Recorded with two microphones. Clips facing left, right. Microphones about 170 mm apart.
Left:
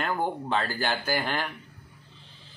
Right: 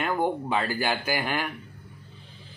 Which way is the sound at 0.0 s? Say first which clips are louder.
Right 3 dB; 10° right (ahead or behind).